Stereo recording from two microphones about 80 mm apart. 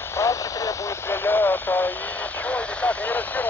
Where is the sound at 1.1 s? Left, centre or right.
Left.